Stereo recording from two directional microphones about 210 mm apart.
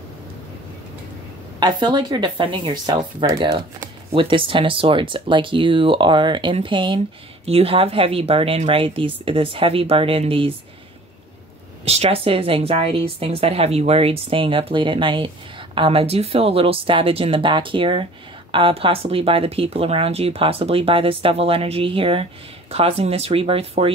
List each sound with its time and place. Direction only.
1.6 s speech: 20° right (ahead or behind)
11.8 s speech: 30° right (ahead or behind)